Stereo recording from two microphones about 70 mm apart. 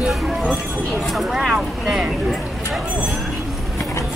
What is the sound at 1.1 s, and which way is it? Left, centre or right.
Vehicle, centre.